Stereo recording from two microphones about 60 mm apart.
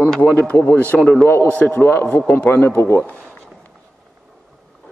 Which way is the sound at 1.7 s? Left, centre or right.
Left.